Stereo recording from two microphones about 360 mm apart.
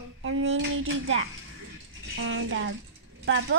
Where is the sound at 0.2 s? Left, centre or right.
Right.